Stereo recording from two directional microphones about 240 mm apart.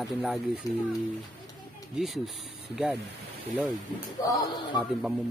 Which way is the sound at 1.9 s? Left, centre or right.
Centre.